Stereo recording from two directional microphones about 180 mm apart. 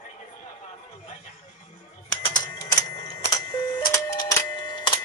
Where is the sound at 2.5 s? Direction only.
20° left (ahead or behind).